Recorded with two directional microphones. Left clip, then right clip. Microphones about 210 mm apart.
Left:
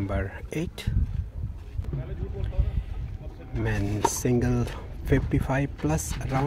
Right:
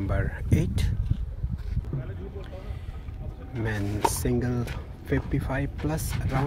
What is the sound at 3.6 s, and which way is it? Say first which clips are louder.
Speech: even; 10° left (ahead or behind).